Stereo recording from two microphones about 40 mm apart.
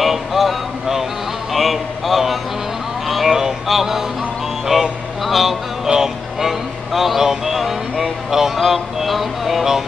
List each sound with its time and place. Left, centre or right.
0.0 s music: centre
1.5 s a sound: centre
4.7 s music: centre
5.9 s music: right
6.4 s a sound: centre
8.5 s music: centre